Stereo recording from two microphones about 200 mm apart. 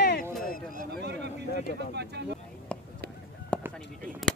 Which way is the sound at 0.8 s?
55° right (ahead or behind).